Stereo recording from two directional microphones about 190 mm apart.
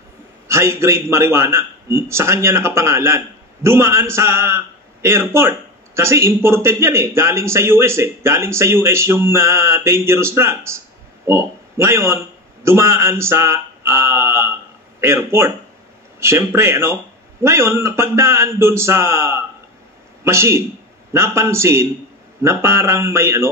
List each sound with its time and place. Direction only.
0.5 s a man's voice: 15° right (ahead or behind)